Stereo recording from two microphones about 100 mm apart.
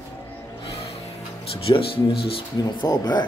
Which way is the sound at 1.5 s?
65° left (ahead or behind).